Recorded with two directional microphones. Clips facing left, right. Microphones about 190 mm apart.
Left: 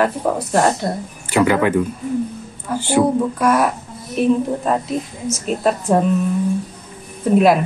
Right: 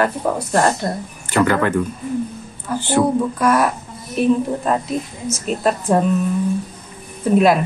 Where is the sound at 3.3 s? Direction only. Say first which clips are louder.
Right 1 dB; centre (ahead or behind).